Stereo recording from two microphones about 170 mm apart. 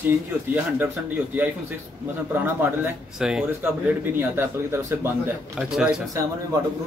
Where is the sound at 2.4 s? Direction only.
10° right (ahead or behind).